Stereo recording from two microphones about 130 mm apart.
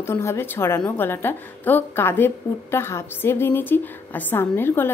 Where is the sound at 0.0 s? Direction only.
20° left (ahead or behind).